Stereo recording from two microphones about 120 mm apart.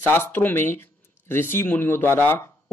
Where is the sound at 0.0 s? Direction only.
15° left (ahead or behind).